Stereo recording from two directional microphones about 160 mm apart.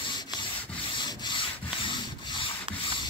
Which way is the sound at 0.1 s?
30° left (ahead or behind).